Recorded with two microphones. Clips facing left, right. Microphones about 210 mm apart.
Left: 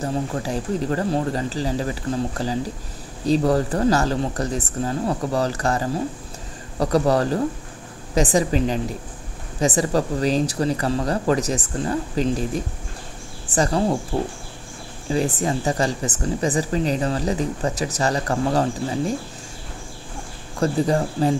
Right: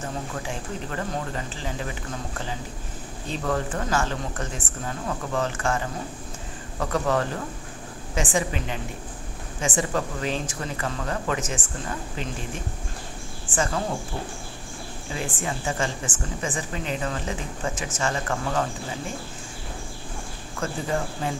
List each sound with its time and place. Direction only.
0.0 s a woman's voice: 35° left (ahead or behind)
15.0 s speech: 35° left (ahead or behind)
20.5 s speech: 35° left (ahead or behind)